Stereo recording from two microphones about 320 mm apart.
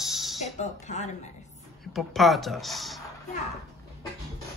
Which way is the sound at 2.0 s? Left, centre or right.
Centre.